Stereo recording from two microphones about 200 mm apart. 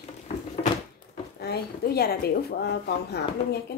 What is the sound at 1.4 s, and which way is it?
A woman's voice, 50° left (ahead or behind).